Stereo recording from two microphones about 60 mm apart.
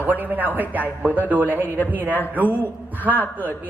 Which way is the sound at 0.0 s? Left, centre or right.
Right.